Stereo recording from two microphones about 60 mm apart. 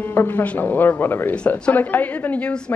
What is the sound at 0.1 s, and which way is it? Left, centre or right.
A woman's voice, left.